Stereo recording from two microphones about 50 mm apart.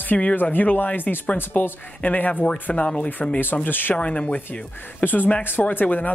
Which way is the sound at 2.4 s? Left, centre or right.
Left.